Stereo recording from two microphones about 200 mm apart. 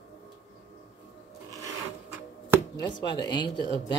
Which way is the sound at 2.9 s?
20° left (ahead or behind).